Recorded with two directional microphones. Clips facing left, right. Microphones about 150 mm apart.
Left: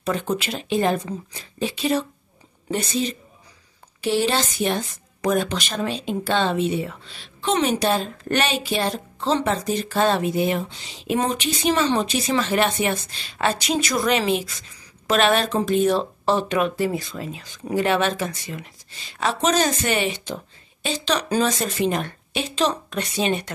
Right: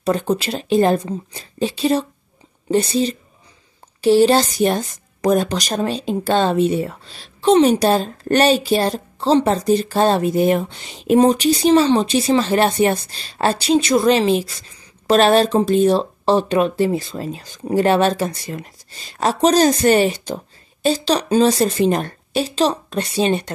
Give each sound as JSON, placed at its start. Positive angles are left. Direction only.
{"t": 0.0, "sound": "speech", "side_deg": -35}
{"t": 11.1, "sound": "speech", "side_deg": -35}